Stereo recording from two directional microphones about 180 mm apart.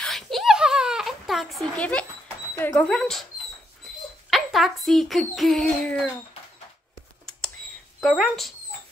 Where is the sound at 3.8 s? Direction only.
Centre (ahead or behind).